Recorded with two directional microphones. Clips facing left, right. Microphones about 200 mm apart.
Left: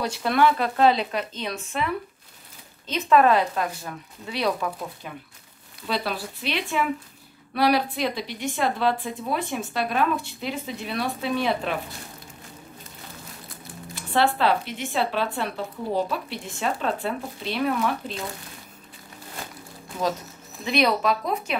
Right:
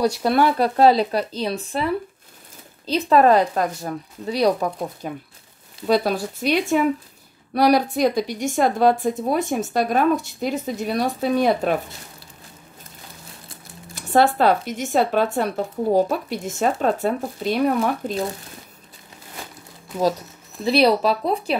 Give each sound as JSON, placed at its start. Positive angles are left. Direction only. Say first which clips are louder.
{"t": 0.0, "sound": "speech", "louder": "right 3 dB", "side_deg": -40}
{"t": 2.9, "sound": "speech", "louder": "right 3 dB", "side_deg": -35}
{"t": 13.9, "sound": "speech", "louder": "right 5 dB", "side_deg": -45}
{"t": 20.6, "sound": "speech", "louder": "right 5 dB", "side_deg": -35}